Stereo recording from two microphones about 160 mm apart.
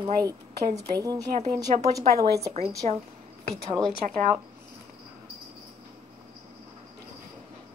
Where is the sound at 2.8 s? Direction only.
45° right (ahead or behind).